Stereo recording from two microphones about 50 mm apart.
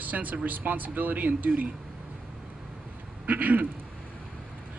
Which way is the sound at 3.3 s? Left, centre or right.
Right.